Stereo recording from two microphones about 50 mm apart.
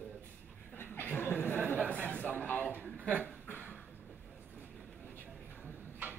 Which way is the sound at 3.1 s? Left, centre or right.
Right.